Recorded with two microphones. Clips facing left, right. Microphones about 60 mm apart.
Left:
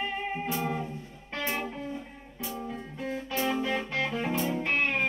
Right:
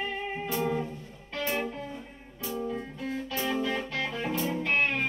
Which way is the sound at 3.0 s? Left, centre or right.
Left.